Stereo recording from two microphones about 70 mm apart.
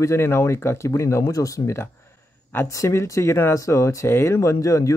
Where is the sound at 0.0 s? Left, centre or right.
Left.